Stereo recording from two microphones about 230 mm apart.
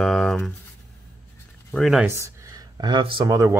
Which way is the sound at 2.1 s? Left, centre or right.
Centre.